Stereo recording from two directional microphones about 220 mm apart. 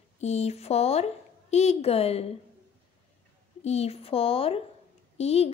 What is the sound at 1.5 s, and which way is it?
Speech, 30° left (ahead or behind).